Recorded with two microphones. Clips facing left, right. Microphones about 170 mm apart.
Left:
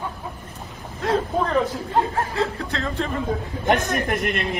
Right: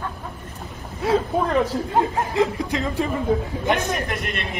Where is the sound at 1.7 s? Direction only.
15° right (ahead or behind).